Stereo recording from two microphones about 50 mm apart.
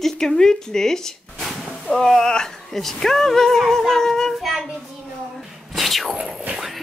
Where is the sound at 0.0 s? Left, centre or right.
Centre.